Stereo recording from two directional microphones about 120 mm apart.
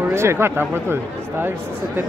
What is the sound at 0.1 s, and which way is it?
Speech, 20° right (ahead or behind).